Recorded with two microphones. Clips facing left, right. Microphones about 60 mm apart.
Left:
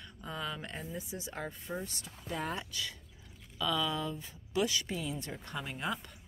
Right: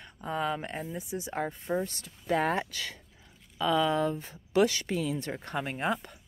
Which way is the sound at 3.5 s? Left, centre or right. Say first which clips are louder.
Right 7 dB; right.